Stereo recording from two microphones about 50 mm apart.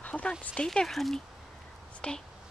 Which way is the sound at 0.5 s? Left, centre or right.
Centre.